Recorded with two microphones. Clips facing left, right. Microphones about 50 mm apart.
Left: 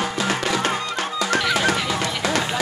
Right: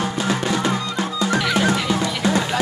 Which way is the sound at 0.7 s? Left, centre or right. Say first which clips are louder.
Right 1 dB; left.